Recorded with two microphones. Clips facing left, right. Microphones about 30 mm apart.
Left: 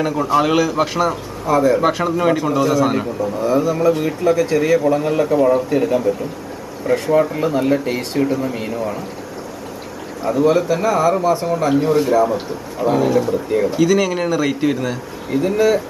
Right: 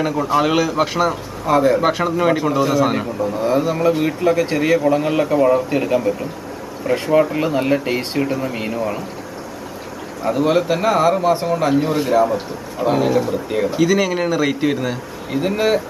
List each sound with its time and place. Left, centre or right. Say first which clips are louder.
0.1 s a man's voice: left 2 dB; centre
1.4 s speech: even; right
1.8 s speech: even; centre
3.3 s speech: left 1 dB; right
4.7 s speech: even; centre
10.3 s speech: left 2 dB; right
11.8 s speech: left 1 dB; centre
15.4 s speech: left 2 dB; right